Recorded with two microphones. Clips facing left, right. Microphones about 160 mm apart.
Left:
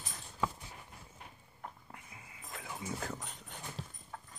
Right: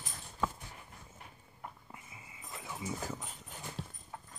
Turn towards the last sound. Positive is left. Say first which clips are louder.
# right 1 dB
turn(degrees=-5)  # may be behind; listen again after turning